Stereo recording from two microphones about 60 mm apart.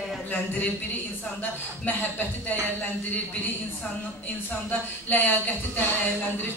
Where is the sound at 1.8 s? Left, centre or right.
Left.